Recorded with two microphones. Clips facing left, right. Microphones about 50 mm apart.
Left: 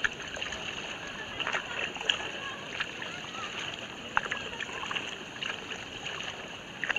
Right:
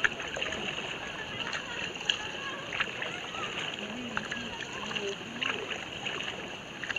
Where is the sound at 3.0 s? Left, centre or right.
Centre.